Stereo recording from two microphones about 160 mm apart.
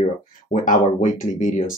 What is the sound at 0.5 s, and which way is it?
Speech, 55° left (ahead or behind).